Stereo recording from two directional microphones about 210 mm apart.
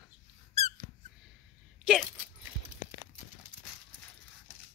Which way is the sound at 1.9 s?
5° right (ahead or behind).